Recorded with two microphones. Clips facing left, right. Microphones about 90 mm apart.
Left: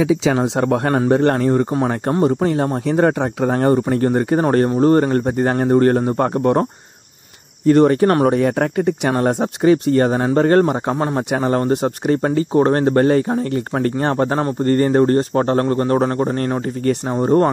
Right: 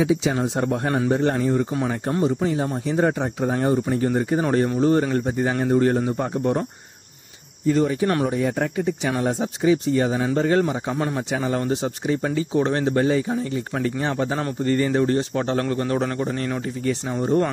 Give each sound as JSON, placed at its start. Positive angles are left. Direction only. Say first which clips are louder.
{"t": 0.3, "sound": "speech", "louder": "left 6 dB", "side_deg": 90}
{"t": 0.9, "sound": "a man's voice", "louder": "left 5 dB", "side_deg": 60}